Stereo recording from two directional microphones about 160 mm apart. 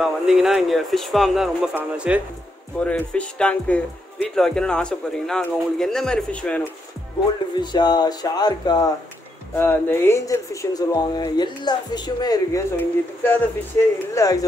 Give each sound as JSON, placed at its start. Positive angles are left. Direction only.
{"t": 0.0, "sound": "speech", "side_deg": -5}
{"t": 2.8, "sound": "speech", "side_deg": 10}
{"t": 7.5, "sound": "speech", "side_deg": 25}
{"t": 9.6, "sound": "speech", "side_deg": 15}
{"t": 12.7, "sound": "speech", "side_deg": 10}